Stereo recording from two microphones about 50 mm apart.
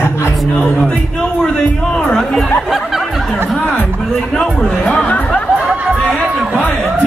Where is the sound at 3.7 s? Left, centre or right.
Left.